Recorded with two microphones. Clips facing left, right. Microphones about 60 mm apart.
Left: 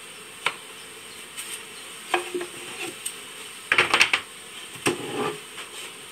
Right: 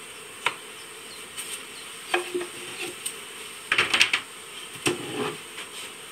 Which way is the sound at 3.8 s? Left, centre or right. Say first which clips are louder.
Left 3 dB; left.